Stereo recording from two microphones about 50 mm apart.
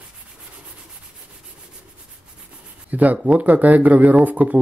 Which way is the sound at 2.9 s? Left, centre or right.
Right.